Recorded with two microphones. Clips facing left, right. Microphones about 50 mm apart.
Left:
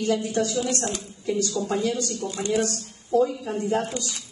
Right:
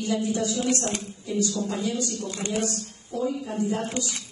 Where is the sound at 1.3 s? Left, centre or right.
Left.